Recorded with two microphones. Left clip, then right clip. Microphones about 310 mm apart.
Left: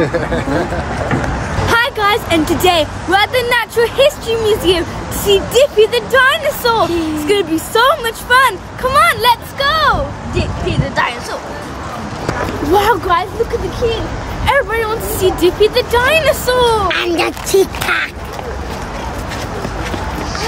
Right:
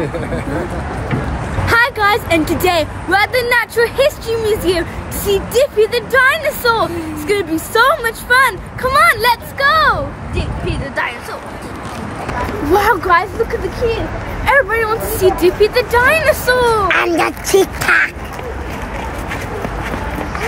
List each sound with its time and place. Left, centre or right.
1.7 s speech: centre
10.3 s a sound: left
12.7 s speech: centre
14.4 s speech: centre
16.8 s speech: centre